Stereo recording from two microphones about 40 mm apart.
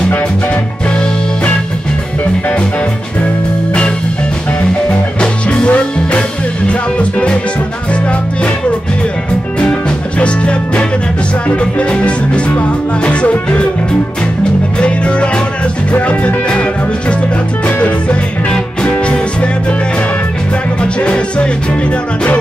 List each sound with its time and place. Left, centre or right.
5.5 s music: left
9.6 s music: left
14.8 s music: left
15.9 s music: left
17.6 s music: left
20.8 s music: left